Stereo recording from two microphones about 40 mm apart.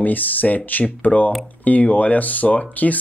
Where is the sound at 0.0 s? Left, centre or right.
Left.